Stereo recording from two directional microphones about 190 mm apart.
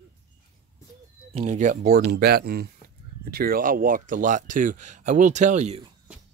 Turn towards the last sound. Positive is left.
turn(degrees=-35)  # may be behind; listen again after turning